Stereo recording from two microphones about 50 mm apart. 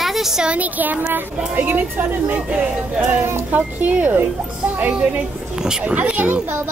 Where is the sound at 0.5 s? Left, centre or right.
Right.